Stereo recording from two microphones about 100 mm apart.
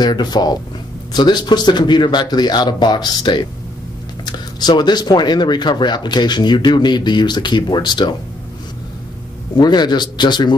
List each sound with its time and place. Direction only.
0.0 s speech: 45° left (ahead or behind)
9.6 s speech: 45° left (ahead or behind)